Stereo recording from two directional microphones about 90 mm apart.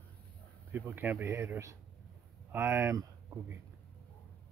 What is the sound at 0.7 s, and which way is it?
Speech, 20° right (ahead or behind).